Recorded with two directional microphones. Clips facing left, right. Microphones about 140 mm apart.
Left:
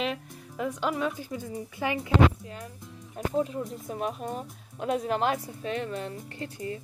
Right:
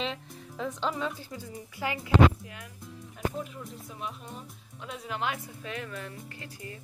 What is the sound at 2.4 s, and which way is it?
Speech, 35° left (ahead or behind).